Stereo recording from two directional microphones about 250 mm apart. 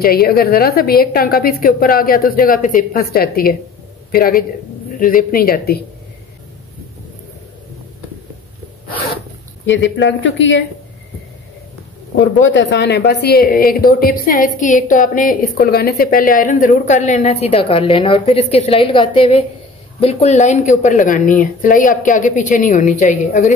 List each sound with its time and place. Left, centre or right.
0.0 s speech: left
9.7 s speech: left
12.4 s speech: left